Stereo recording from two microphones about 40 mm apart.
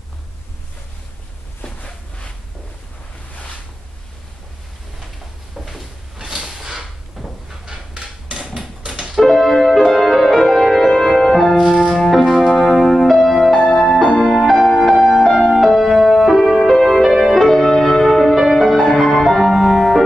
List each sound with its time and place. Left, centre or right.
6.4 s a sound: centre
7.7 s a sound: right
9.3 s music: centre
11.5 s music: centre
13.5 s music: centre
14.2 s music: centre
15.2 s music: centre